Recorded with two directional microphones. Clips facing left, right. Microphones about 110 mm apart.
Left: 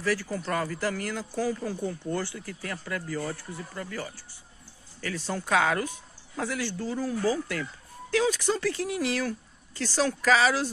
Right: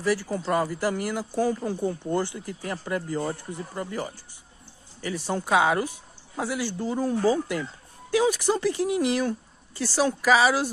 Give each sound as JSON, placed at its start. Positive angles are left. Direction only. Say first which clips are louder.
{"t": 0.0, "sound": "speech", "louder": "right 3 dB", "side_deg": -15}